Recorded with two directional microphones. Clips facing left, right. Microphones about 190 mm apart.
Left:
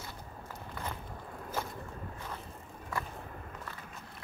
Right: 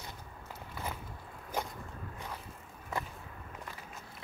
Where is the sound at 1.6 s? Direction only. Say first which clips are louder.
Right 1 dB; 15° right (ahead or behind).